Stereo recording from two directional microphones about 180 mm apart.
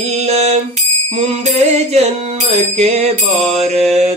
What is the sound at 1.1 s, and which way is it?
Mantra, 40° right (ahead or behind).